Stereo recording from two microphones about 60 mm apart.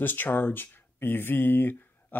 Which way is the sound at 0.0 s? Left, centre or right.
Left.